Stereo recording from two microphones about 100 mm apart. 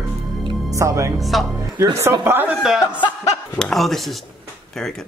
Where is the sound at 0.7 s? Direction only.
30° right (ahead or behind).